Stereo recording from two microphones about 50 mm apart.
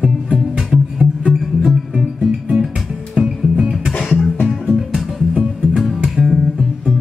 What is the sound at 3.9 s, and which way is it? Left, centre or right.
Music, centre.